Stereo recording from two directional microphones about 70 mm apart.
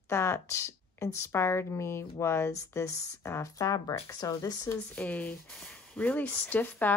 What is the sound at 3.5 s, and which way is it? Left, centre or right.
Speech, left.